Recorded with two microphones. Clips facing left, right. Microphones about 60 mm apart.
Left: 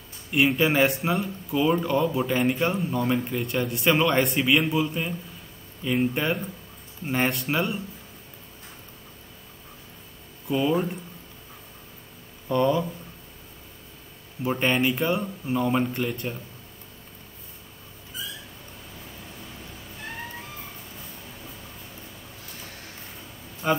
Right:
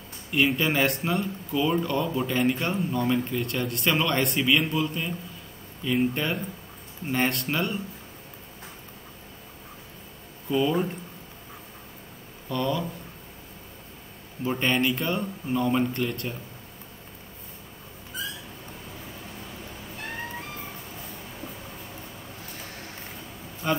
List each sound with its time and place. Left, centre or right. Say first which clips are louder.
0.3 s speech: left 2 dB; centre
7.1 s speech: left 1 dB; centre
10.5 s speech: left 1 dB; centre
12.4 s speech: left 5 dB; left
14.4 s speech: left 1 dB; centre
23.6 s speech: left 2 dB; centre